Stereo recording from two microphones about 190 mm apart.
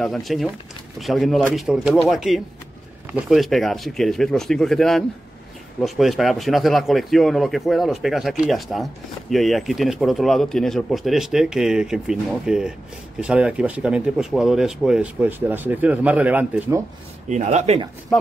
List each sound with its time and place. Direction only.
0.0 s speech: centre (ahead or behind)
17.3 s speech: 35° right (ahead or behind)